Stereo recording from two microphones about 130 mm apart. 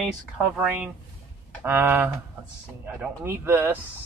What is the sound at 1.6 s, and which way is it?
Speech, 15° right (ahead or behind).